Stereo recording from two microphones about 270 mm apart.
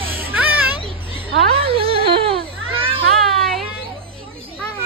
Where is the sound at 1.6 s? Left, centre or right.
Right.